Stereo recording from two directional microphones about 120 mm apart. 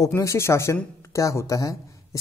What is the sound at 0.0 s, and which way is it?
Speech, 25° left (ahead or behind).